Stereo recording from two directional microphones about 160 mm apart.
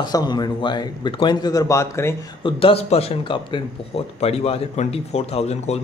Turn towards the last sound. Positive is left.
turn(degrees=40)  # may be behind; listen again after turning